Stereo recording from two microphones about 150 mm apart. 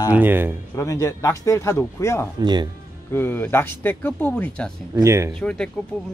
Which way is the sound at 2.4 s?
30° right (ahead or behind).